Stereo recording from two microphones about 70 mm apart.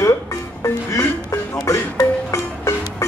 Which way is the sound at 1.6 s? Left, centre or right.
Left.